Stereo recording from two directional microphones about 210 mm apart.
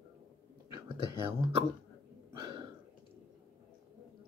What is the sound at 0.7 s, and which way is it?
Whispering, 10° right (ahead or behind).